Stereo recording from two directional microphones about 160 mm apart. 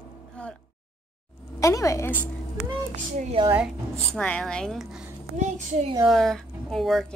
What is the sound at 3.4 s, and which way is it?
Speech, 30° right (ahead or behind).